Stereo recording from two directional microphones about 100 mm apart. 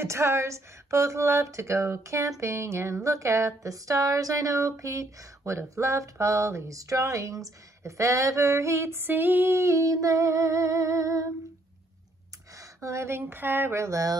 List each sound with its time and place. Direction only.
0.0 s speech: 30° right (ahead or behind)
12.5 s speech: 30° right (ahead or behind)